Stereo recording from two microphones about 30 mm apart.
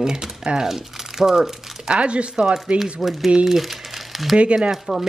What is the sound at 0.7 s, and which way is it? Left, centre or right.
Speech, centre.